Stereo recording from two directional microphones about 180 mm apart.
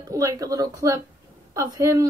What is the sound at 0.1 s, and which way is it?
A woman's voice, 20° right (ahead or behind).